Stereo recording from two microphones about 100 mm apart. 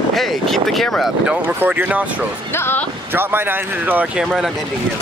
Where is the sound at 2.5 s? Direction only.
25° left (ahead or behind).